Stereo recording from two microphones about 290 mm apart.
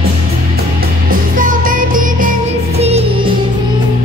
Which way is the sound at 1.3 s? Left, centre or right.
Right.